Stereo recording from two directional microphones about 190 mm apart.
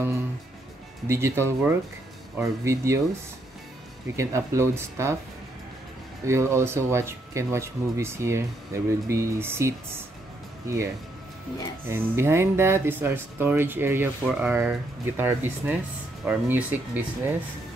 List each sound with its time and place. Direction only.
1.0 s speech: 15° right (ahead or behind)
4.2 s speech: 15° right (ahead or behind)
6.2 s speech: 15° right (ahead or behind)
11.9 s speech: 15° right (ahead or behind)